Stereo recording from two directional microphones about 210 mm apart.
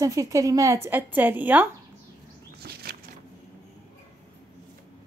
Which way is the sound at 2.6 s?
50° right (ahead or behind).